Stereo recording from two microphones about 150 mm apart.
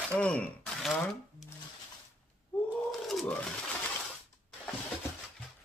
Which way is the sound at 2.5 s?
10° left (ahead or behind).